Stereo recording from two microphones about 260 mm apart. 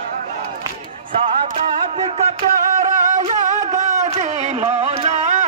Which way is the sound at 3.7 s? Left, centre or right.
Right.